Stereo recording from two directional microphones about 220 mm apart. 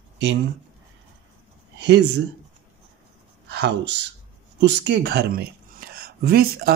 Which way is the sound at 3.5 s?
50° right (ahead or behind).